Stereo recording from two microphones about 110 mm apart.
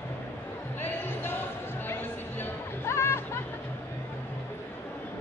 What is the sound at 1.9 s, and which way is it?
Music, 20° left (ahead or behind).